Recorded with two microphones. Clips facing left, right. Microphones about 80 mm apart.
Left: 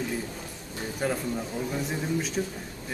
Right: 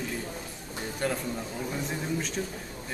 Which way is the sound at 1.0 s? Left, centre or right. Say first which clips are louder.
Left 1 dB; centre.